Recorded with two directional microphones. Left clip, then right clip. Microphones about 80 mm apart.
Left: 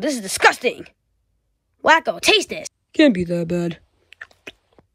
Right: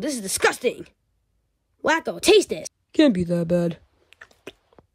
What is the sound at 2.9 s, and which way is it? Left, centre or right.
Speech, right.